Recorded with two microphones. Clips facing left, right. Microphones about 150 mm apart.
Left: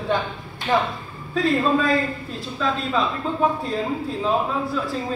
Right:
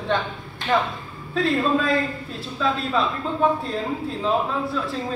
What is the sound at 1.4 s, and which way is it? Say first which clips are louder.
A man's voice: left 1 dB; centre (ahead or behind).